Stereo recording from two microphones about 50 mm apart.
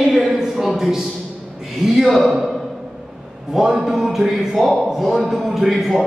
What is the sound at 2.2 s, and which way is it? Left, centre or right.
Speech, right.